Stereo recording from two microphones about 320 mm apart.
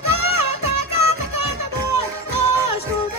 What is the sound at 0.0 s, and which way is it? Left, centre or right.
Music, right.